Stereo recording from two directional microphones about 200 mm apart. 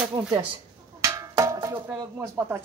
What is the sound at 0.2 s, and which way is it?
Speech, 20° right (ahead or behind).